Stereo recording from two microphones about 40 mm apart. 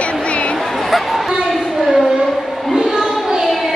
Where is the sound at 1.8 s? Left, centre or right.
Centre.